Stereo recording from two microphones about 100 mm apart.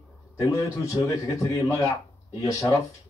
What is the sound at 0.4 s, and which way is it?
A man's voice, 35° left (ahead or behind).